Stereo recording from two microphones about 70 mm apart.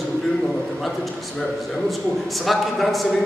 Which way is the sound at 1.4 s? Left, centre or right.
Centre.